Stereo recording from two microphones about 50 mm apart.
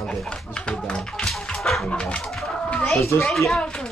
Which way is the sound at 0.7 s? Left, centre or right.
Centre.